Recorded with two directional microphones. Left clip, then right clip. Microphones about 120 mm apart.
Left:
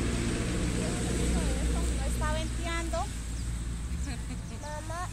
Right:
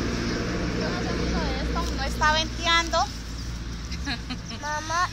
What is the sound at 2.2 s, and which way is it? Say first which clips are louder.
Speech: right 14 dB; 25° left (ahead or behind).